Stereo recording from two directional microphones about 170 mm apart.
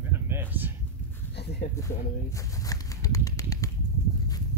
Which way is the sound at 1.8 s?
20° left (ahead or behind).